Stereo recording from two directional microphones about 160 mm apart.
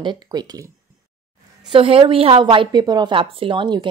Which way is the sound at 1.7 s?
35° right (ahead or behind).